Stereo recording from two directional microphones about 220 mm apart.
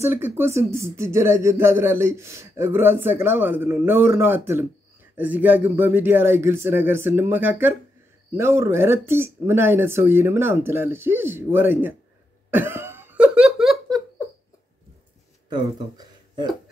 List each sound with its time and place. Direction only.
0.0 s speech: 10° right (ahead or behind)
12.4 s laughter: 10° right (ahead or behind)
16.0 s a sound: 20° right (ahead or behind)